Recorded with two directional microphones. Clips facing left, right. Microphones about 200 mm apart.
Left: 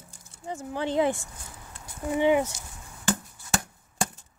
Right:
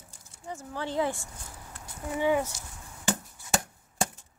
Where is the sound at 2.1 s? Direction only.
20° left (ahead or behind).